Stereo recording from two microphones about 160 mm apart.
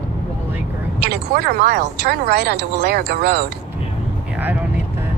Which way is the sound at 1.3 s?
90° right.